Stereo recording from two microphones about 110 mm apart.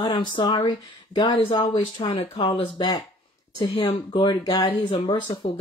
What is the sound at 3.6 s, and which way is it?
Speech, 65° left (ahead or behind).